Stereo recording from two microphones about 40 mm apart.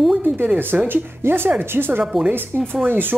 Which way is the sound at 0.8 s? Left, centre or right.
Right.